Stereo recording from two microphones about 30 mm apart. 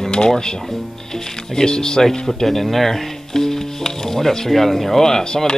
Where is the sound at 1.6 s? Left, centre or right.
Left.